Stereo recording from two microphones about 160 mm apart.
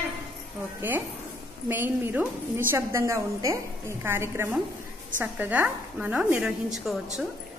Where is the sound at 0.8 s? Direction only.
10° right (ahead or behind).